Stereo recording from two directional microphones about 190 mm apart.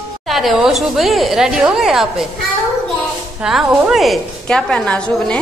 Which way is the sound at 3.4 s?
Centre (ahead or behind).